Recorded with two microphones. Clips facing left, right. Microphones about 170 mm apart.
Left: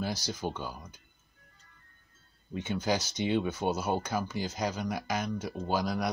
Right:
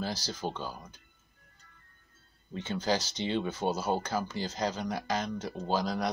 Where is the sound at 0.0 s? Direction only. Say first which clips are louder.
Left 1 dB; 15° left (ahead or behind).